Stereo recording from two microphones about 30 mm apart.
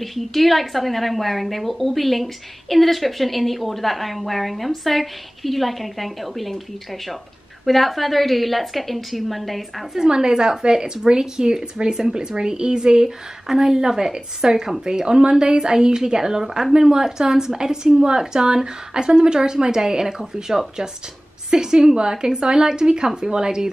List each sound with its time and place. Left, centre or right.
0.0 s a woman's voice: centre
7.6 s a woman's voice: centre
9.9 s a woman's voice: right
18.0 s a woman's voice: right